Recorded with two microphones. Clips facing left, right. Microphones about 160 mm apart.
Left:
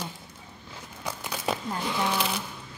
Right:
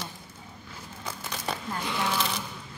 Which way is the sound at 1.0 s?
10° left (ahead or behind).